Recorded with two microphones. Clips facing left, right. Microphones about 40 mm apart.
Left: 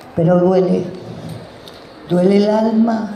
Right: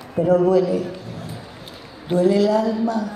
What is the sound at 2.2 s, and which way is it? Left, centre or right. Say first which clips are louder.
Speech: left 4 dB; left.